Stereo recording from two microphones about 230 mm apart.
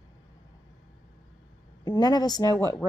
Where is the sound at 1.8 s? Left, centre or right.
Centre.